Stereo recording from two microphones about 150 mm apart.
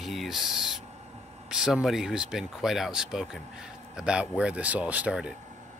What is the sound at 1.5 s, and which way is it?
A man's voice, 5° right (ahead or behind).